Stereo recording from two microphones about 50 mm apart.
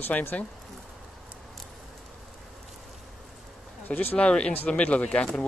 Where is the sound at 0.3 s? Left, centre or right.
Left.